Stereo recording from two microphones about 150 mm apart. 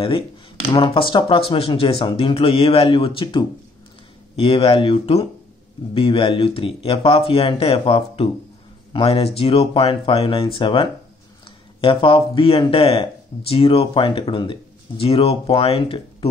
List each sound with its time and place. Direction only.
0.9 s speech: 35° left (ahead or behind)